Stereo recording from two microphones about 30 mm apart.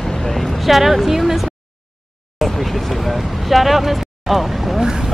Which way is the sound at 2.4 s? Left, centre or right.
Centre.